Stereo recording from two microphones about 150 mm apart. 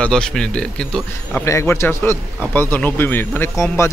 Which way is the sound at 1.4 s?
20° left (ahead or behind).